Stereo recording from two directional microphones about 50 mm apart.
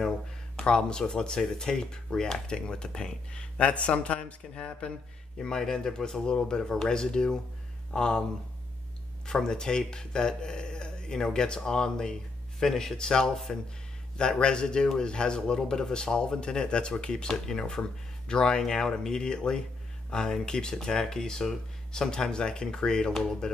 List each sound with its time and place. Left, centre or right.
0.6 s speech: centre
9.2 s speech: centre